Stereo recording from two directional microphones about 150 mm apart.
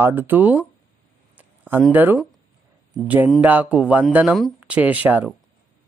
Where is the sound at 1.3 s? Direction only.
10° right (ahead or behind).